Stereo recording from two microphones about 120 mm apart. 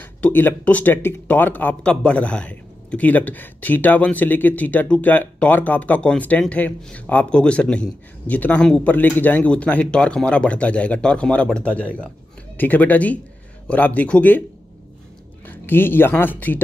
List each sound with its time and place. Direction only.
0.0 s speech: 15° left (ahead or behind)
15.4 s speech: 15° left (ahead or behind)